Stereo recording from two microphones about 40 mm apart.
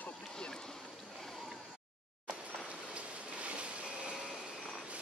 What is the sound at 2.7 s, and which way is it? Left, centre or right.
Vehicle, right.